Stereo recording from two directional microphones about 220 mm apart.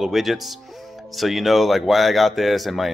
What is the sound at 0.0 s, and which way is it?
Speech, centre (ahead or behind).